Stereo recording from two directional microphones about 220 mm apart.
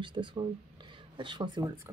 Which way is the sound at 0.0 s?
20° right (ahead or behind).